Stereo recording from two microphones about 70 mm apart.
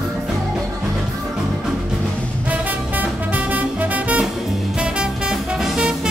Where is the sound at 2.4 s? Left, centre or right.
Right.